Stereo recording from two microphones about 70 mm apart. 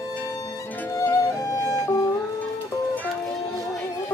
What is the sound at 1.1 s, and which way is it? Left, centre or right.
Music, left.